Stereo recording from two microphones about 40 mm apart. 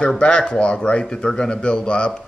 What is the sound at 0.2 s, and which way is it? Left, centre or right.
A man's voice, left.